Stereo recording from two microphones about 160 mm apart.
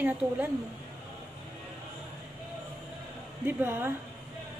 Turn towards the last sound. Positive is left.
turn(degrees=-15)  # may be behind; listen again after turning